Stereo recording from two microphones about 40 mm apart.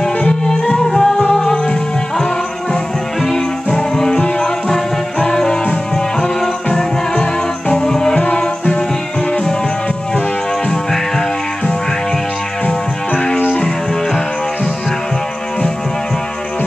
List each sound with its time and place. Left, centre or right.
0.2 s music: left
3.2 s music: centre
10.7 s music: centre
12.6 s music: left